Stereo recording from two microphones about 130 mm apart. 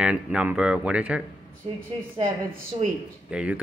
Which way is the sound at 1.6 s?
50° right (ahead or behind).